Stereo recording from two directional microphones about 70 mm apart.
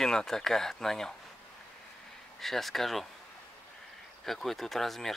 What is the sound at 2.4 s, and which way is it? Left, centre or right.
Speech, centre.